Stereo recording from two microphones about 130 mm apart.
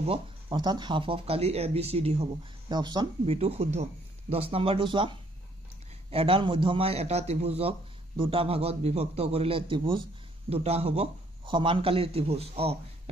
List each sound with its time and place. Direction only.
0.0 s a sound: 45° right (ahead or behind)
0.6 s a man's voice: 35° right (ahead or behind); by 2.2 s 50° right (ahead or behind)
2.7 s speech: 30° right (ahead or behind)
3.3 s a man's voice: 50° right (ahead or behind)
10.5 s a man's voice: 50° right (ahead or behind)